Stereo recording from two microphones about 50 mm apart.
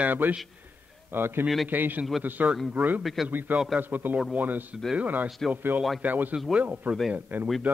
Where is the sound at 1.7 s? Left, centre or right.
Right.